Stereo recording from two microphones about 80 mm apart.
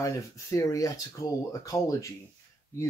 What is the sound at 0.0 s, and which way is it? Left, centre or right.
Speech, left.